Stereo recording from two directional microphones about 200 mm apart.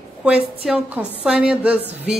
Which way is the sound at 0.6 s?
Centre (ahead or behind).